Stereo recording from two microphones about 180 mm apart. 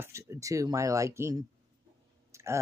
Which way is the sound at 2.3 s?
15° right (ahead or behind).